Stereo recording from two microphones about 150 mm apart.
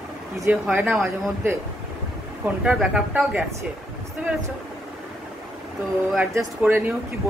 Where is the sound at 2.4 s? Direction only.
10° right (ahead or behind).